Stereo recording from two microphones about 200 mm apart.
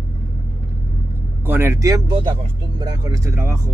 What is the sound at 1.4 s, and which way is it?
Speech, 10° right (ahead or behind).